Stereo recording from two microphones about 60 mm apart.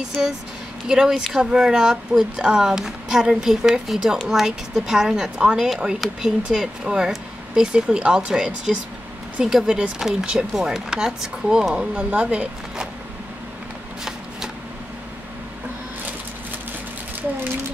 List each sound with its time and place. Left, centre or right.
0.8 s speech: centre